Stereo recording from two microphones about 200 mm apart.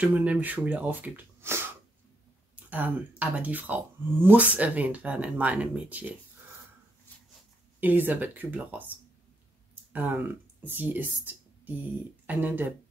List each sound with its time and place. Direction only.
0.0 s speech: 5° right (ahead or behind)
7.8 s speech: 10° right (ahead or behind)
9.9 s speech: 10° right (ahead or behind)